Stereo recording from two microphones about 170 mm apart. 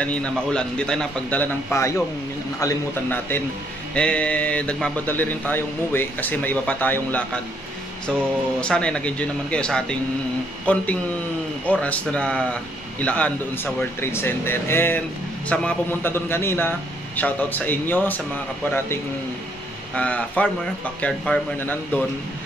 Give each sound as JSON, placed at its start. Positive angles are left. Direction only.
{"t": 0.0, "sound": "speech", "side_deg": 5}
{"t": 20.0, "sound": "speech", "side_deg": 5}